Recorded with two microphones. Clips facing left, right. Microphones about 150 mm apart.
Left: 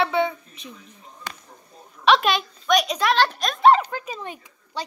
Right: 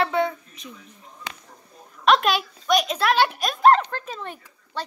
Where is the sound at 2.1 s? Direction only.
Centre (ahead or behind).